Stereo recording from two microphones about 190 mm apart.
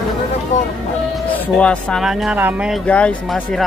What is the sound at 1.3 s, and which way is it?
Speech, 5° left (ahead or behind).